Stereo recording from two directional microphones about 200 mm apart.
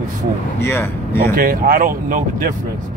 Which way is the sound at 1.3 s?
45° right (ahead or behind).